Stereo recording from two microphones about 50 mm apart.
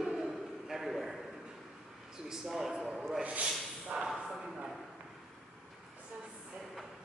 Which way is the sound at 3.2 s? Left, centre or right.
Right.